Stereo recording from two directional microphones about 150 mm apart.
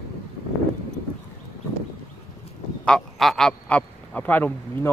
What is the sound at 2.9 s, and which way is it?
Speech, centre (ahead or behind).